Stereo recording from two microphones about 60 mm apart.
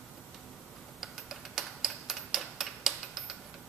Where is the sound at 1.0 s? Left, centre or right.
Centre.